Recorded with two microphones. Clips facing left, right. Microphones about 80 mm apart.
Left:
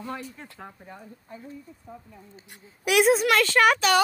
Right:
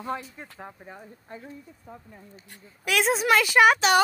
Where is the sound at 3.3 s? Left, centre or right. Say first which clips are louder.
Right 1 dB; centre.